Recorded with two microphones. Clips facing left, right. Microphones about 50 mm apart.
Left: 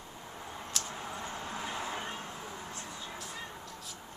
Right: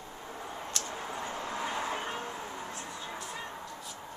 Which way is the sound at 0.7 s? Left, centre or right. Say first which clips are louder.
Even; centre.